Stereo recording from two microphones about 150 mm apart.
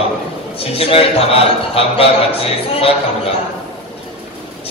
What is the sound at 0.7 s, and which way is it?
A man's voice, 40° left (ahead or behind).